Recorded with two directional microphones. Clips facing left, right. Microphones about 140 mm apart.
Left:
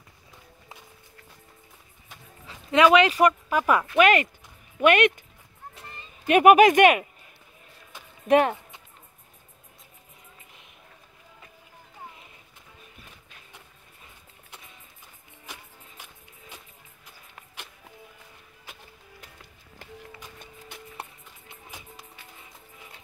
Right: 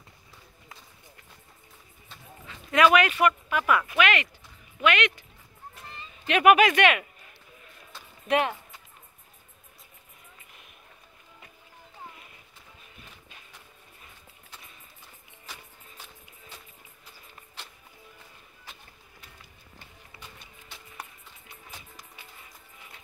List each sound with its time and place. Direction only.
2.7 s speech: 25° left (ahead or behind); by 5.2 s 50° left (ahead or behind)
6.2 s speech: 45° left (ahead or behind)
7.9 s a sound: 15° left (ahead or behind)
8.3 s speech: 40° left (ahead or behind)
16.0 s music: 15° left (ahead or behind)
21.0 s music: 25° left (ahead or behind)